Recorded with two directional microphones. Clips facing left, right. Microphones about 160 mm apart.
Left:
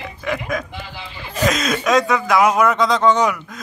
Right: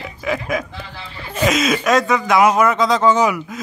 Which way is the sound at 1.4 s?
5° right (ahead or behind).